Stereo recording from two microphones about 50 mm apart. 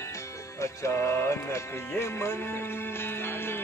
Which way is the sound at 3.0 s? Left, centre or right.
Left.